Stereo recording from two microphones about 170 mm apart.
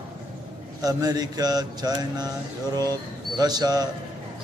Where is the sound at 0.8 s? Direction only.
20° right (ahead or behind).